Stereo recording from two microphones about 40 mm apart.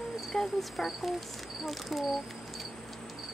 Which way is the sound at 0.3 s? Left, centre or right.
Centre.